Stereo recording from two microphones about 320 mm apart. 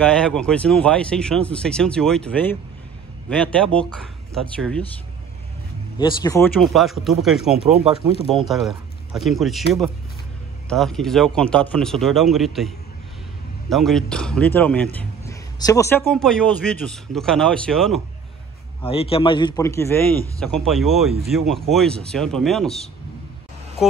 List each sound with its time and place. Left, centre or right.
0.0 s speech: centre
5.9 s speech: centre
18.9 s a man's voice: centre